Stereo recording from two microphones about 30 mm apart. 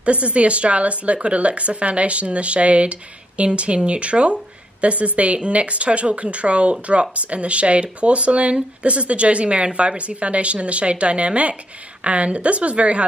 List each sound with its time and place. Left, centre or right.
0.0 s speech: right